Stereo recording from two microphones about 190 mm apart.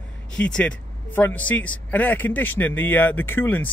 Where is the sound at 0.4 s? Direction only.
5° left (ahead or behind).